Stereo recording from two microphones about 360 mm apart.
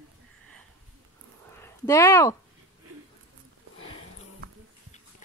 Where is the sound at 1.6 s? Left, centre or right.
Centre.